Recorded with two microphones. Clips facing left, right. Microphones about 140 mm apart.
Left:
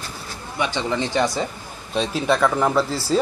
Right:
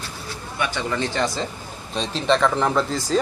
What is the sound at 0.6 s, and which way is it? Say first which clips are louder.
Speech: left 2 dB; 20° left (ahead or behind).